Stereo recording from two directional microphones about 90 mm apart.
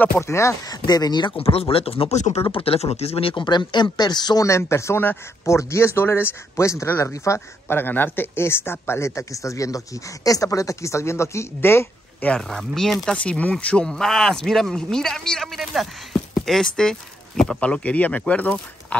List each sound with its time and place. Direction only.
0.3 s speech: 30° left (ahead or behind)
0.7 s speech: 50° left (ahead or behind)
1.3 s speech: 90° left; by 4.5 s 50° left (ahead or behind)
4.5 s speech: 30° left (ahead or behind)
12.4 s speech: 5° left (ahead or behind)